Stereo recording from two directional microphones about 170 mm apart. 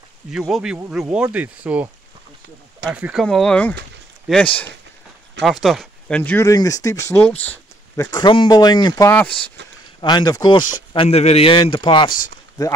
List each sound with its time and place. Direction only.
0.3 s speech: 5° right (ahead or behind)
2.9 s a man's voice: 5° right (ahead or behind); by 9.1 s 20° left (ahead or behind)
9.1 s speech: 5° left (ahead or behind)
9.9 s a man's voice: 25° left (ahead or behind)